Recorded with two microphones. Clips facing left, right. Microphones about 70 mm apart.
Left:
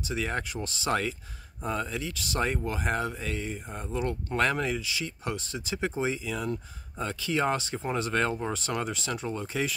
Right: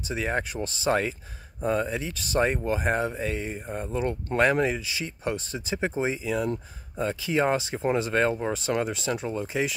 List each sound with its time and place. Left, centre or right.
0.1 s speech: right